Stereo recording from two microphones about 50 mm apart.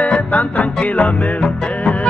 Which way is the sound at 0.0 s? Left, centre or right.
Left.